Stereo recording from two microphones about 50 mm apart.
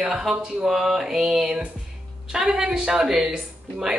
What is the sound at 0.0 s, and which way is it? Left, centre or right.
Speech, centre.